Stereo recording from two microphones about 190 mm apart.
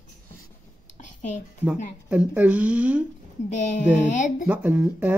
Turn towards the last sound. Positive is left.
turn(degrees=-10)  # may be behind; listen again after turning